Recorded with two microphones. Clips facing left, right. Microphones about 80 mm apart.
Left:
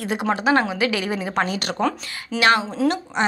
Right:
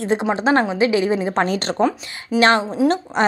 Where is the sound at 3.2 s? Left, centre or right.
Right.